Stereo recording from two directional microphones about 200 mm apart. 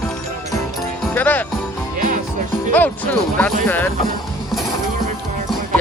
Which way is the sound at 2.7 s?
10° left (ahead or behind).